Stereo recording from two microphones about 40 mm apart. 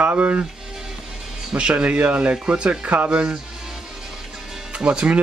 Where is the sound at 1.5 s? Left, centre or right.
Right.